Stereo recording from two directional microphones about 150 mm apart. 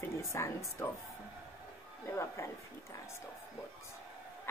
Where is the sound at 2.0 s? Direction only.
20° left (ahead or behind).